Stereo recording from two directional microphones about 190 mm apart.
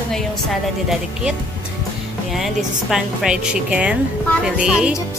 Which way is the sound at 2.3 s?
Centre (ahead or behind).